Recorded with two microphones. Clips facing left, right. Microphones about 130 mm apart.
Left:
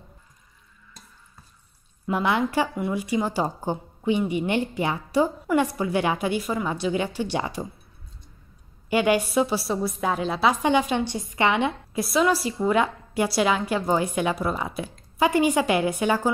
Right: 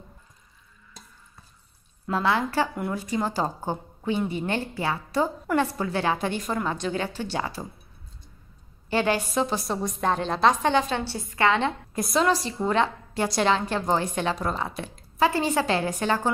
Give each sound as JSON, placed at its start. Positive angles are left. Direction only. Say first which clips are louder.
{"t": 2.0, "sound": "a woman's voice", "louder": "left 1 dB", "side_deg": 15}
{"t": 2.7, "sound": "speech", "louder": "left 3 dB", "side_deg": 0}
{"t": 3.0, "sound": "a woman's voice", "louder": "left 2 dB", "side_deg": 10}
{"t": 8.9, "sound": "a woman's voice", "louder": "left 3 dB", "side_deg": 10}
{"t": 11.9, "sound": "a woman's voice", "louder": "left 1 dB", "side_deg": 5}